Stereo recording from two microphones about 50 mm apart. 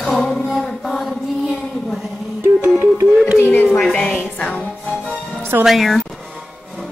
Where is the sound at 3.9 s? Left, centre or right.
Left.